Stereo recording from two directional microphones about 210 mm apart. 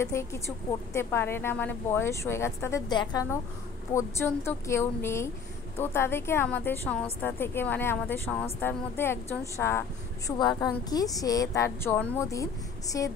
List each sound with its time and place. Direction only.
0.0 s a woman's voice: 15° left (ahead or behind)